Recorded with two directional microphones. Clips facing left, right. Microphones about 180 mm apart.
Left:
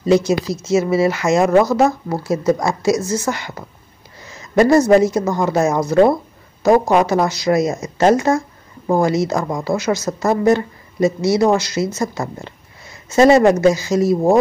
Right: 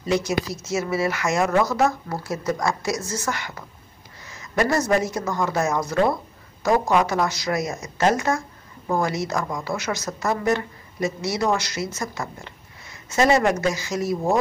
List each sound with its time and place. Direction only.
0.0 s speech: 30° left (ahead or behind)